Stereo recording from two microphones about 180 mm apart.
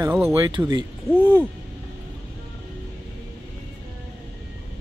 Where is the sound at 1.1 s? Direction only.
10° right (ahead or behind).